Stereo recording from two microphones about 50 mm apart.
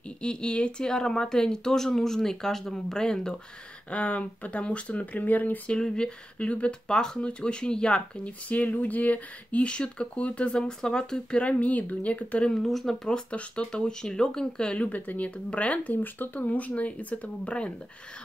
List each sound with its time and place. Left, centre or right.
0.2 s speech: centre
3.9 s speech: left
5.7 s speech: centre
8.5 s speech: left
10.8 s speech: centre
11.4 s speech: left
12.5 s speech: centre
13.1 s speech: centre
14.9 s speech: left